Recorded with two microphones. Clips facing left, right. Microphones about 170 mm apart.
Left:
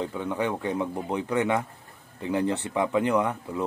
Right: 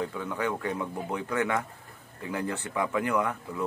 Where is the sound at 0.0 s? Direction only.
20° left (ahead or behind).